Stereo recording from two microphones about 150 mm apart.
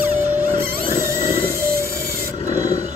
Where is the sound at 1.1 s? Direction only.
20° right (ahead or behind).